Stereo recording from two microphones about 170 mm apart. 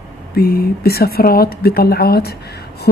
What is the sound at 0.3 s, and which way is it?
Speech, 65° left (ahead or behind).